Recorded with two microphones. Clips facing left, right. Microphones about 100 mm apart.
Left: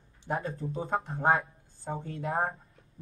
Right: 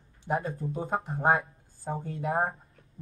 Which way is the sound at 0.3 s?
5° right (ahead or behind).